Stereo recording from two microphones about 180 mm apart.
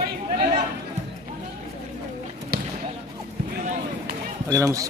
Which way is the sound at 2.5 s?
60° right (ahead or behind).